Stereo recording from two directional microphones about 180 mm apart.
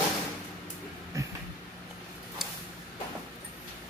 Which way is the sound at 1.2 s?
20° right (ahead or behind).